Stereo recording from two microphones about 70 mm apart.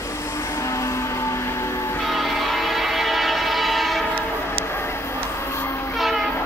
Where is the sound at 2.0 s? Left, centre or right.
Centre.